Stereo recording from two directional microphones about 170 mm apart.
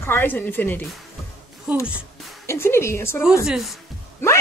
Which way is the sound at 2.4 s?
15° left (ahead or behind).